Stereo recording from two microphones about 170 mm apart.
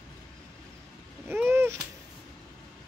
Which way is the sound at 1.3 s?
15° right (ahead or behind).